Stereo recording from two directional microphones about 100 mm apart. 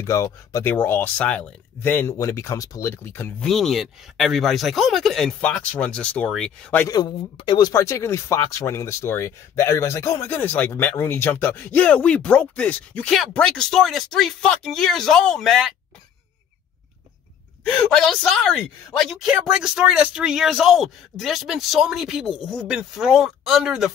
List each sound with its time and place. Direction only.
0.0 s speech: 30° left (ahead or behind)
0.7 s speech: 20° left (ahead or behind)
2.1 s speech: 30° left (ahead or behind)
3.3 s speech: 5° left (ahead or behind)
5.4 s speech: 15° left (ahead or behind)
6.9 s speech: 45° left (ahead or behind)
7.7 s speech: 30° left (ahead or behind); by 15.7 s centre (ahead or behind)
17.6 s speech: 10° left (ahead or behind)